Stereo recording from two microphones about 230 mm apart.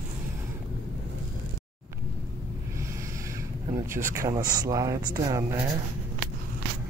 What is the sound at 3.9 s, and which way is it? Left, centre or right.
Speech, centre.